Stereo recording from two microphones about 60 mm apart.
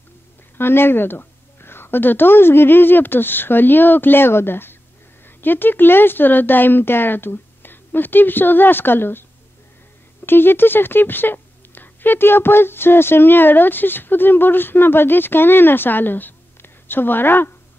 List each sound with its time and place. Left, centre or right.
0.6 s speech: left
10.2 s speech: left